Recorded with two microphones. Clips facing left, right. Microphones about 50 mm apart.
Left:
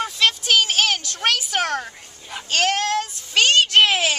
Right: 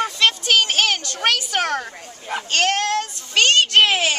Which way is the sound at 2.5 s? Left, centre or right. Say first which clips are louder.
Even; centre.